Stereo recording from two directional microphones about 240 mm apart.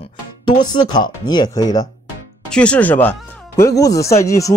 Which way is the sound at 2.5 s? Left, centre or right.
Centre.